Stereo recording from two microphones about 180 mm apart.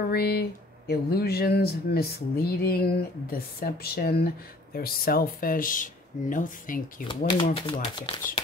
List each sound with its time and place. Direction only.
0.1 s speech: 60° left (ahead or behind)
7.5 s speech: 25° left (ahead or behind)